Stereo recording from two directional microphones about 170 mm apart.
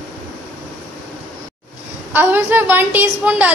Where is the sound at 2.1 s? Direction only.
10° right (ahead or behind).